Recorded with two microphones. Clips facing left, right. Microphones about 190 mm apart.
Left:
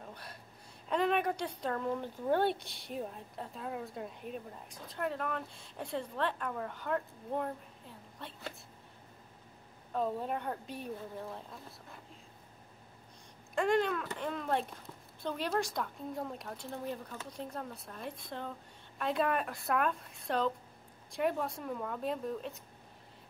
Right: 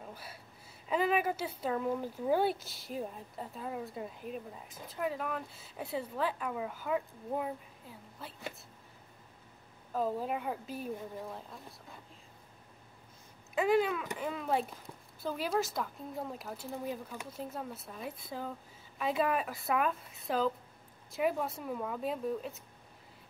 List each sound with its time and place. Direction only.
0.1 s speech: 5° right (ahead or behind)
9.9 s speech: 5° right (ahead or behind)
13.6 s speech: 5° right (ahead or behind)